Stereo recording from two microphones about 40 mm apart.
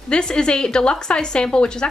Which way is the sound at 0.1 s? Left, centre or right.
Centre.